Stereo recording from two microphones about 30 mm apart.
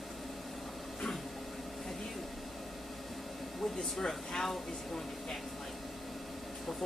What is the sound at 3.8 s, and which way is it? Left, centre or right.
Speech, centre.